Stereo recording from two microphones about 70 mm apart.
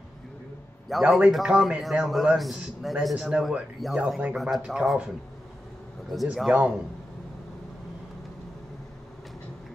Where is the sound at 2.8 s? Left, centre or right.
Centre.